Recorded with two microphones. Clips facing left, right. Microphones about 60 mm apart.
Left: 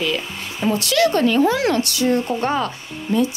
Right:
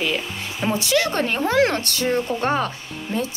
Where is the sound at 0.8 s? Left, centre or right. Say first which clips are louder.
Left 4 dB; right.